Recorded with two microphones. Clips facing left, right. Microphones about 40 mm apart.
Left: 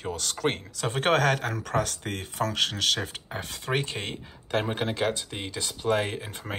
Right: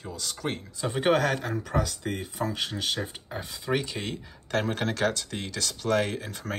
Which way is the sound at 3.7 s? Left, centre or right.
Left.